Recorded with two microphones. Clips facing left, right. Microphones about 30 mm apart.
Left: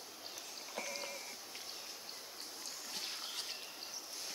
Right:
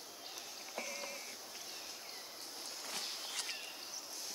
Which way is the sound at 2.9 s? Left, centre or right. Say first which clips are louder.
Right 1 dB; right.